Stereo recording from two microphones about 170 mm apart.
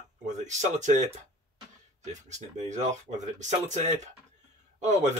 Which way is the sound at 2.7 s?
45° right (ahead or behind).